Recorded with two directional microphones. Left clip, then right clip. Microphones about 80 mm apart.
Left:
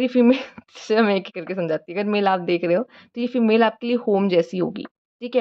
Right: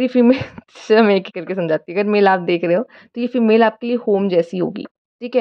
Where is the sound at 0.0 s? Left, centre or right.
Right.